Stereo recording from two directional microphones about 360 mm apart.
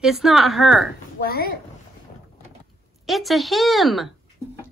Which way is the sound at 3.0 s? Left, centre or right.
Centre.